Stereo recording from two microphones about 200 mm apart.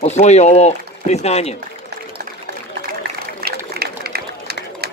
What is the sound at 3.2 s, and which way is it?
Run, 50° right (ahead or behind).